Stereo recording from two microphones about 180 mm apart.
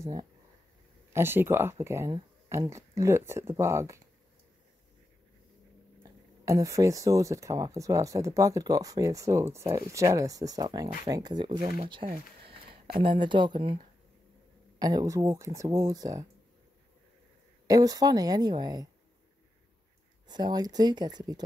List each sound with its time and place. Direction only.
0.0 s speech: 20° right (ahead or behind)
6.4 s speech: 20° right (ahead or behind)
12.0 s speech: 45° right (ahead or behind)
12.4 s speech: 30° right (ahead or behind)
14.8 s speech: 20° right (ahead or behind)
17.6 s speech: 20° right (ahead or behind)
20.2 s speech: 25° right (ahead or behind)